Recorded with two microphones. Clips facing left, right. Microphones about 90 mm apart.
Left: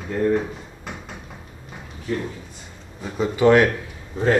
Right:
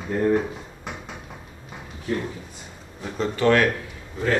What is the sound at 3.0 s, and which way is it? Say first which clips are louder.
Speech: left 4 dB; 10° left (ahead or behind).